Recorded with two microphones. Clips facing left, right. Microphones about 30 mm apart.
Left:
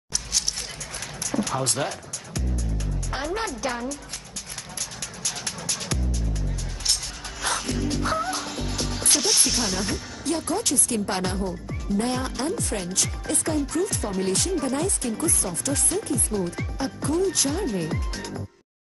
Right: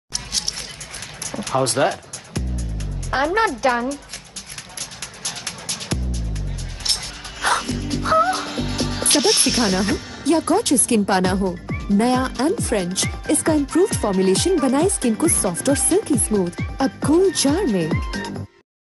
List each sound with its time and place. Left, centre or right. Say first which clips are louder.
0.1 s music: right 2 dB; right
5.2 s music: right 1 dB; right
8.2 s speech: right 9 dB; right